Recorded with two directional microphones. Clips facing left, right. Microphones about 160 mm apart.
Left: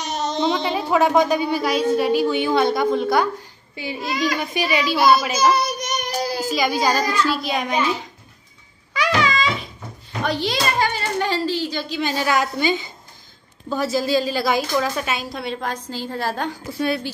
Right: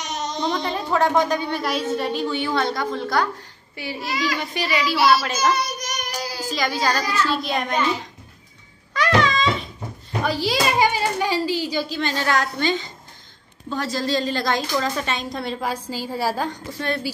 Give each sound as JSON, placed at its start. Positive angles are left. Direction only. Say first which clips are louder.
{"t": 0.0, "sound": "a sound", "louder": "left 4 dB", "side_deg": 30}
{"t": 0.4, "sound": "a woman's voice", "louder": "left 3 dB", "side_deg": 5}
{"t": 1.6, "sound": "a woman's voice", "louder": "left 5 dB", "side_deg": 0}
{"t": 5.9, "sound": "child singing", "louder": "left 5 dB", "side_deg": 30}
{"t": 6.3, "sound": "a woman's voice", "louder": "left 3 dB", "side_deg": 15}
{"t": 7.2, "sound": "a woman's voice", "louder": "left 1 dB", "side_deg": 0}
{"t": 8.9, "sound": "a sound", "louder": "right 1 dB", "side_deg": 0}
{"t": 10.2, "sound": "a woman's voice", "louder": "even", "side_deg": -5}
{"t": 12.0, "sound": "a woman's voice", "louder": "left 4 dB", "side_deg": 10}
{"t": 16.7, "sound": "a woman's voice", "louder": "left 5 dB", "side_deg": 10}